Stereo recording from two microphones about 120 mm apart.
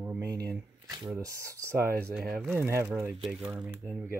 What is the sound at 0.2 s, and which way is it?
Shuffling cards, 30° right (ahead or behind).